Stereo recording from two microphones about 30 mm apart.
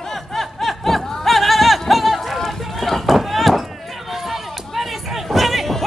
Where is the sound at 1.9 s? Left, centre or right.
Centre.